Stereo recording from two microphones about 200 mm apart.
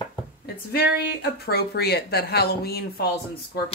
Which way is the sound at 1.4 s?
50° left (ahead or behind).